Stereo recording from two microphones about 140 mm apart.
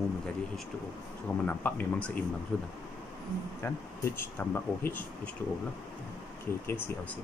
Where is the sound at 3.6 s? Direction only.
15° left (ahead or behind).